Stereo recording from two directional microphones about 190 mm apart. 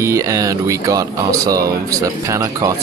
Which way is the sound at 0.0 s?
15° right (ahead or behind).